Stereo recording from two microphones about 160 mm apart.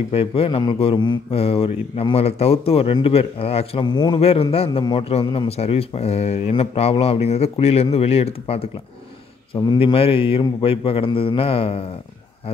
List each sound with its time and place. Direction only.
0.1 s mantra: 35° left (ahead or behind)
4.2 s mantra: 35° left (ahead or behind)